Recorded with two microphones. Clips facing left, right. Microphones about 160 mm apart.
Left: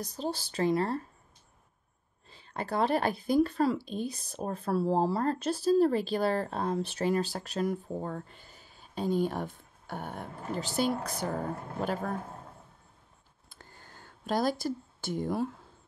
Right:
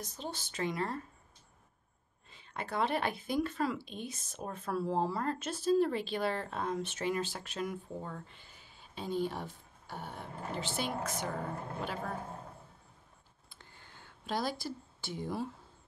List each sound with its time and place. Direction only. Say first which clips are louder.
0.0 s speech: left 8 dB; 35° left (ahead or behind)
2.2 s speech: left 5 dB; 35° left (ahead or behind)
13.5 s a sound: left 4 dB; 40° left (ahead or behind)